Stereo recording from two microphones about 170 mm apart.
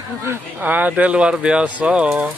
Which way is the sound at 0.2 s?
10° right (ahead or behind).